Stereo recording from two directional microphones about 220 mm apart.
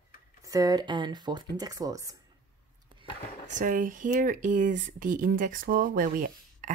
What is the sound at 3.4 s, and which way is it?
Speech, 35° right (ahead or behind).